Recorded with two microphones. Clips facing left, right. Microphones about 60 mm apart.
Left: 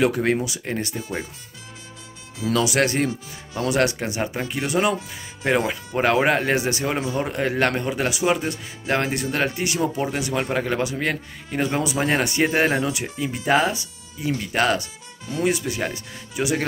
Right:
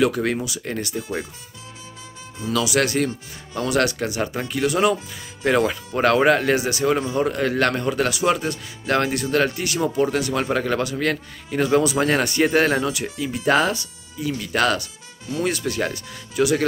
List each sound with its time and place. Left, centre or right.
0.0 s speech: left
2.5 s speech: left; by 13.8 s centre
14.2 s speech: left
15.4 s speech: centre
15.9 s speech: left